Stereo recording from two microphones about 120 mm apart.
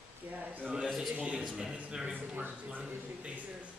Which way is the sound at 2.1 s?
15° right (ahead or behind).